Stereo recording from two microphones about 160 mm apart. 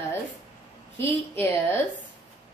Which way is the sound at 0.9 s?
15° left (ahead or behind).